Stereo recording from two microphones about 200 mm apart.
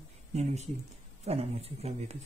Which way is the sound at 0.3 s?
35° right (ahead or behind).